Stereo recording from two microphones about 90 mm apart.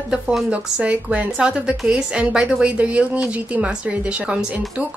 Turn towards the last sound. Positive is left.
turn(degrees=-10)  # may be behind; listen again after turning